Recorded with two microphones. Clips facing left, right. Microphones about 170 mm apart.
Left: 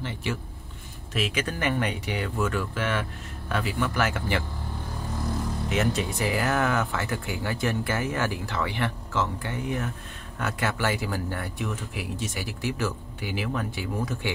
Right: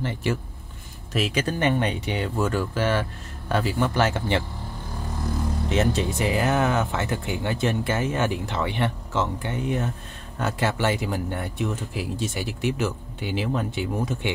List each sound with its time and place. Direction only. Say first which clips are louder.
0.0 s speech: right 5 dB; 45° right (ahead or behind); by 4.5 s 25° right (ahead or behind)
5.7 s speech: right 3 dB; 25° right (ahead or behind)